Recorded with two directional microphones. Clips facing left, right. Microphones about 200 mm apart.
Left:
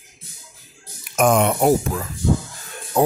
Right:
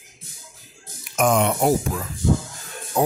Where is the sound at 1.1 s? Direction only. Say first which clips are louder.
Left 2 dB; 55° left (ahead or behind).